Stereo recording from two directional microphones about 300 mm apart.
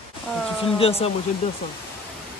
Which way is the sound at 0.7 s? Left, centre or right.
Centre.